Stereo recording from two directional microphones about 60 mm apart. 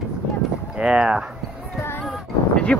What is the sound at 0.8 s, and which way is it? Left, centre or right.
Speech, centre.